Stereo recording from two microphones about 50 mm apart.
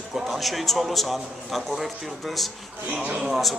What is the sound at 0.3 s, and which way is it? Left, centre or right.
A man's voice, centre.